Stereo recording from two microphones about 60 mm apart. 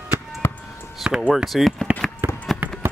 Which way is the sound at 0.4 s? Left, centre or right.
Left.